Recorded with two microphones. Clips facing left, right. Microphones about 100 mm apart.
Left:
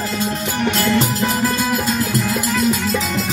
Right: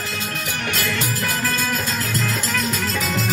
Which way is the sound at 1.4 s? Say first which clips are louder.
Left 5 dB; 15° left (ahead or behind).